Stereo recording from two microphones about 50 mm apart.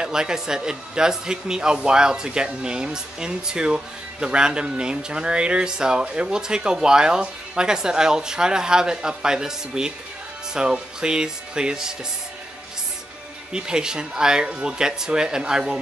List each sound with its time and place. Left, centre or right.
0.0 s speech: centre
13.5 s speech: centre